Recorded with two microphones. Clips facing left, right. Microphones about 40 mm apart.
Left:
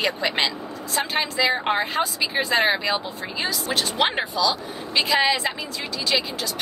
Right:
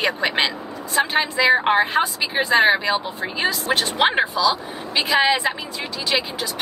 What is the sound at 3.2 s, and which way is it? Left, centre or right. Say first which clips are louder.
Speech: right 4 dB; right.